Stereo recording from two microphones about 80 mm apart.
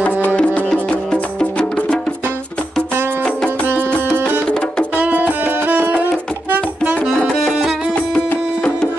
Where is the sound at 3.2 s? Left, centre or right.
Centre.